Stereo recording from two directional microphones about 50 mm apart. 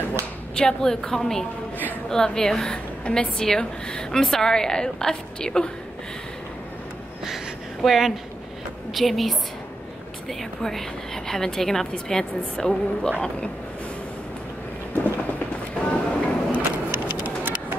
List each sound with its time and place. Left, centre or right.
0.6 s a woman's voice: centre
7.8 s a woman's voice: centre
15.8 s music: left
17.1 s music: right